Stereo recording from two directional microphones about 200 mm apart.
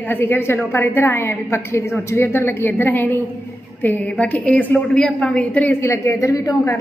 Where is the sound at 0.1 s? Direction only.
10° left (ahead or behind).